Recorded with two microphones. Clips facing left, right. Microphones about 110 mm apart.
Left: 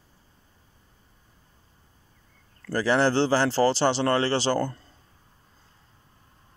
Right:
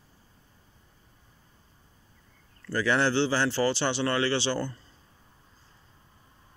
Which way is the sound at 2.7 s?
40° left (ahead or behind).